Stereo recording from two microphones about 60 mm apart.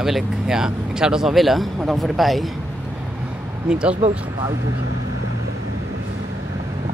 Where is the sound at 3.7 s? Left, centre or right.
Centre.